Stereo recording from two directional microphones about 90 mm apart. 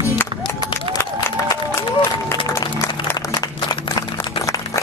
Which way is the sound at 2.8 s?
25° left (ahead or behind).